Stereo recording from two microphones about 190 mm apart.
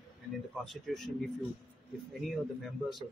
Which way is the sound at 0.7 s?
Centre (ahead or behind).